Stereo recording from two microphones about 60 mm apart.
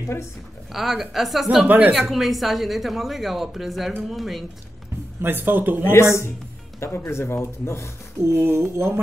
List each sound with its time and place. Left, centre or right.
0.7 s a woman's voice: centre
1.7 s a woman's voice: right
2.0 s a woman's voice: centre
5.2 s speech: right
6.8 s speech: left
8.2 s speech: right